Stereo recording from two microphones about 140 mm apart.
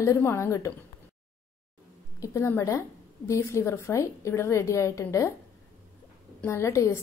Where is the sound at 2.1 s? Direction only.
25° left (ahead or behind).